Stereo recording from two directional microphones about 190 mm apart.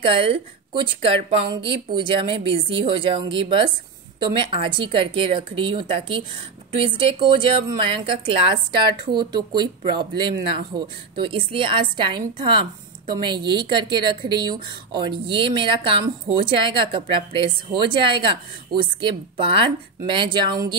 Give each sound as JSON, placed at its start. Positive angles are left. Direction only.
{"t": 0.0, "sound": "a woman's voice", "side_deg": -30}